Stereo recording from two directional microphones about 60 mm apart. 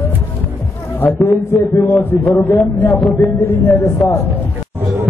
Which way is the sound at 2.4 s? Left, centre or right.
Left.